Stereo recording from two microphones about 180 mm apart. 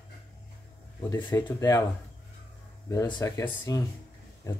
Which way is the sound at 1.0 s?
20° left (ahead or behind).